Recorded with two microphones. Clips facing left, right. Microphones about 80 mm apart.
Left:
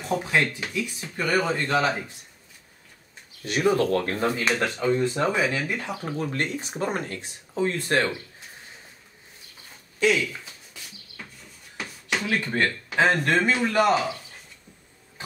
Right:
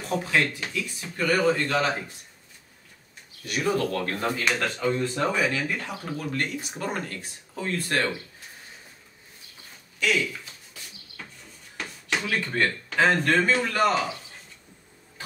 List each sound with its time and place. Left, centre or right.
0.1 s speech: left
3.4 s speech: left
11.7 s a sound: centre
12.3 s speech: centre